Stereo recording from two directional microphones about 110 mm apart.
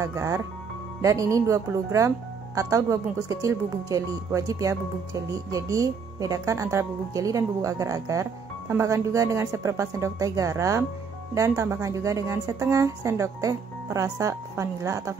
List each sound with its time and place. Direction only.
0.0 s speech: 25° right (ahead or behind)